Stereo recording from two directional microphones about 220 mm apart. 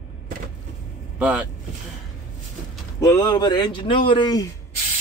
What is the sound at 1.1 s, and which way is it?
Speech, 5° right (ahead or behind).